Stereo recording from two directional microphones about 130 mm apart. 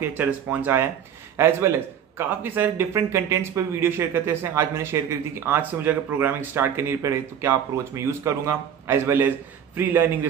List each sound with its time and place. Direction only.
0.0 s a man's voice: 15° right (ahead or behind)